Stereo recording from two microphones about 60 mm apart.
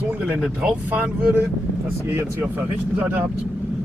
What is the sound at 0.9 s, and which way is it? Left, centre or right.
Speech, right.